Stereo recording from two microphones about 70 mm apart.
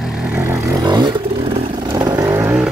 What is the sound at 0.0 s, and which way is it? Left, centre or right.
Vehicle, centre.